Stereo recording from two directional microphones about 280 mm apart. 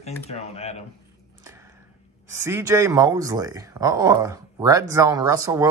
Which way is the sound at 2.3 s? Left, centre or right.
Centre.